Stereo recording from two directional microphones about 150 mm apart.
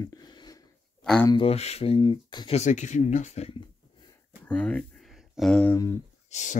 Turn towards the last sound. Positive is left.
turn(degrees=50)  # may be behind; listen again after turning